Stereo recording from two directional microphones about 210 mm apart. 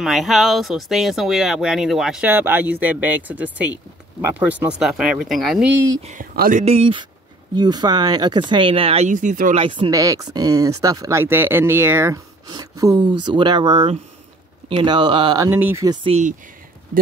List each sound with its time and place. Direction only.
0.0 s speech: centre (ahead or behind)
6.0 s speech: 40° right (ahead or behind)
6.6 s speech: 30° right (ahead or behind)
9.6 s speech: 25° right (ahead or behind)